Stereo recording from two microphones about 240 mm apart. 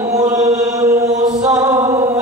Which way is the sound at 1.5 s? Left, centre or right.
Centre.